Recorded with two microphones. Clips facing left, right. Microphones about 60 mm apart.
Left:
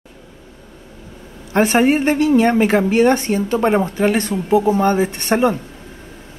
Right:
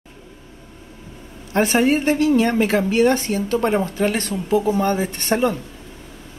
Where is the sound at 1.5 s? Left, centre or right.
Left.